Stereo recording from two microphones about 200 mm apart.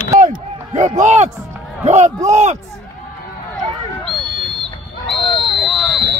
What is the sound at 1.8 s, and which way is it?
Speech, 35° right (ahead or behind).